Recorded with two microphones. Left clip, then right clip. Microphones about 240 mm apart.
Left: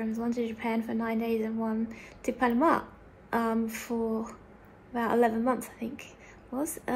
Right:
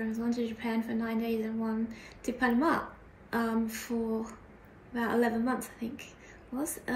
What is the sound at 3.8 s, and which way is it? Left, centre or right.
A woman's voice, centre.